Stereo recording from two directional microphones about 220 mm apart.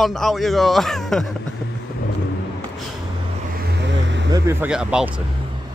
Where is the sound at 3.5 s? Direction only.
50° right (ahead or behind).